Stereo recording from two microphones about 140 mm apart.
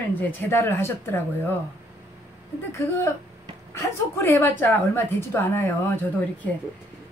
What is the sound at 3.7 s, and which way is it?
A woman's voice, 15° left (ahead or behind).